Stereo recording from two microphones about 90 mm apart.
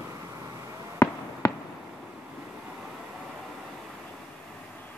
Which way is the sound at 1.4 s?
40° left (ahead or behind).